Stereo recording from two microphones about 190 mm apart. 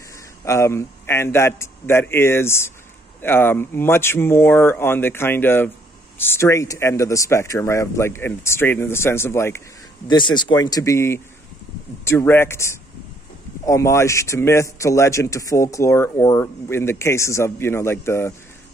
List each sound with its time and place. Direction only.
0.5 s a man's voice: 15° left (ahead or behind)
10.0 s a man's voice: 25° left (ahead or behind)